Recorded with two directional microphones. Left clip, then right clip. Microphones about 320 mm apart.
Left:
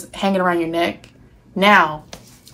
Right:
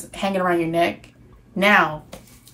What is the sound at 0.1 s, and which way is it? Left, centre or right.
Speech, centre.